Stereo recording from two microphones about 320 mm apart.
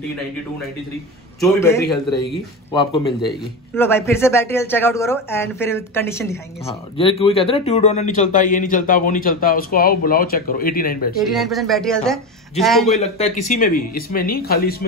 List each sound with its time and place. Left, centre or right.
1.4 s a man's voice: centre; by 11.1 s left
11.1 s speech: centre
13.0 s speech: left